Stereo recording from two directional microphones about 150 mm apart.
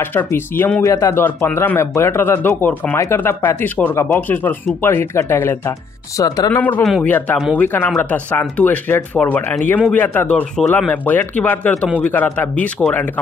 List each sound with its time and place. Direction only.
0.0 s speech: 15° left (ahead or behind)
6.6 s speech: 10° left (ahead or behind)